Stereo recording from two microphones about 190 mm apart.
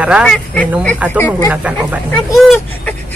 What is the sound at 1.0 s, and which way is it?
Speech, 5° right (ahead or behind).